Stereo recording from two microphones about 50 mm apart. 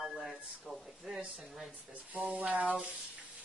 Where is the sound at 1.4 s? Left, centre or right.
Centre.